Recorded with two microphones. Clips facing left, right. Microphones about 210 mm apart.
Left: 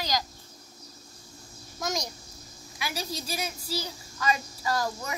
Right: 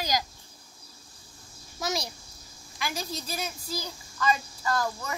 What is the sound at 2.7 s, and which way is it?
A woman's voice, 10° left (ahead or behind).